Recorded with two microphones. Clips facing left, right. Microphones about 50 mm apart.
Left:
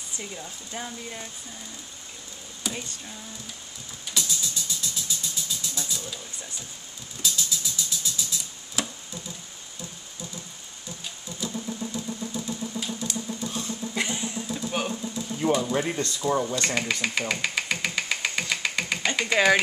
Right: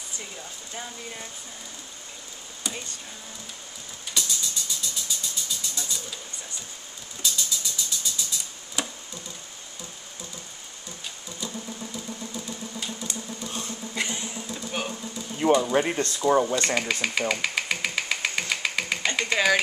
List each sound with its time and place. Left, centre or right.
0.2 s speech: centre
2.6 s speech: centre
4.1 s music: centre
7.2 s a sound: centre
11.3 s vehicle: centre
13.5 s a sound: right
13.9 s vehicle: centre
15.7 s speech: right
16.3 s speech: centre
16.5 s speech: centre
17.3 s engine: centre